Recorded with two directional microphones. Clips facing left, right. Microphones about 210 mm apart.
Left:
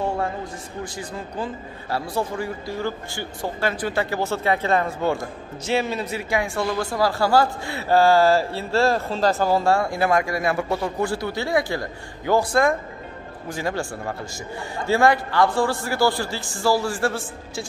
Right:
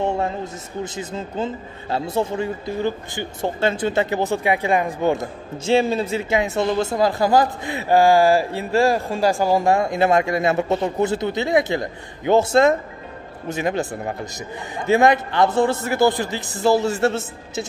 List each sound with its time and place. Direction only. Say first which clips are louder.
0.8 s speech: right 3 dB; 20° right (ahead or behind)